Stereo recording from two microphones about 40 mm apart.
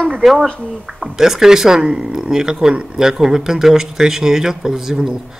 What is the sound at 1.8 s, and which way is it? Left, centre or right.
Speech, right.